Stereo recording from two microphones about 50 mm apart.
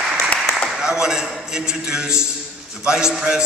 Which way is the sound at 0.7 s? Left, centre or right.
Centre.